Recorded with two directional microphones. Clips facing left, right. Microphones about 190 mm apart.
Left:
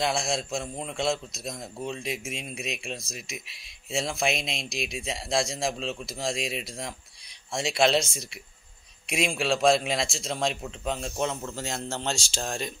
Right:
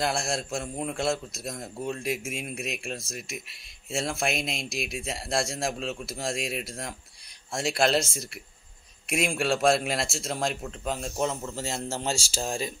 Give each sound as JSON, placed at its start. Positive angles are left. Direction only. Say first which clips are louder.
{"t": 0.0, "sound": "a man's voice", "louder": "left 1 dB", "side_deg": -5}